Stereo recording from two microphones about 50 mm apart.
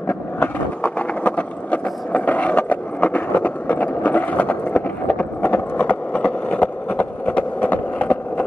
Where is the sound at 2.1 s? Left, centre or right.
Left.